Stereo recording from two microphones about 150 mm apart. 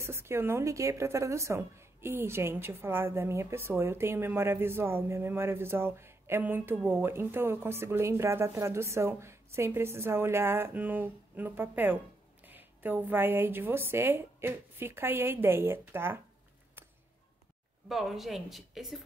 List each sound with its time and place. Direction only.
0.0 s a woman's voice: 15° right (ahead or behind)
17.8 s a woman's voice: centre (ahead or behind)